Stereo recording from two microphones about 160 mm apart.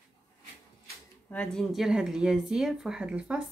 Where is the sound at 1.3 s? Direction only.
5° left (ahead or behind).